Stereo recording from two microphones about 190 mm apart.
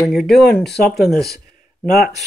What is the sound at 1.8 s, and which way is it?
Speech, 50° left (ahead or behind).